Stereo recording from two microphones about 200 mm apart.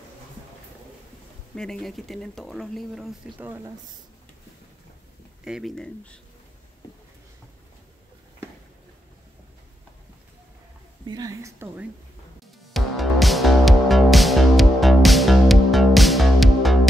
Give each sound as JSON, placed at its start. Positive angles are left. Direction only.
{"t": 1.5, "sound": "speech", "side_deg": 5}
{"t": 5.4, "sound": "speech", "side_deg": 0}
{"t": 11.1, "sound": "speech", "side_deg": -15}
{"t": 12.4, "sound": "music", "side_deg": 0}